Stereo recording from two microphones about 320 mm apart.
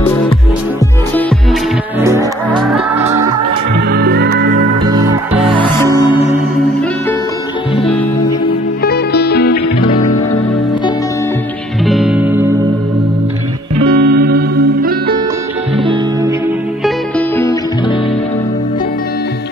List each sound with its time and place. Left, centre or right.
1.1 s music: centre
3.9 s music: right
5.4 s music: centre
7.8 s music: centre
8.5 s music: left
11.8 s music: centre
13.9 s music: right
15.8 s music: centre
17.4 s music: centre